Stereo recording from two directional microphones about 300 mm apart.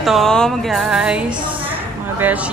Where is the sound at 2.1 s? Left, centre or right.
Centre.